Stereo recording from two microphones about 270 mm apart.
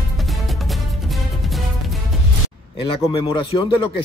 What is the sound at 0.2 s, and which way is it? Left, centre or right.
Music, centre.